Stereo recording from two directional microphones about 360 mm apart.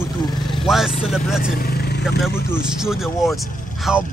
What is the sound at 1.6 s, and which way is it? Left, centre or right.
Vehicle, left.